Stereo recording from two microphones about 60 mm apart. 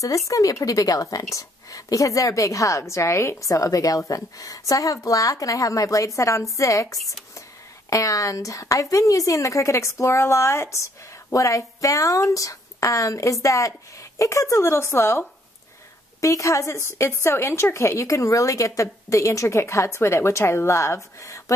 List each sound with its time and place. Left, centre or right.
0.3 s a woman's voice: left
16.2 s a woman's voice: left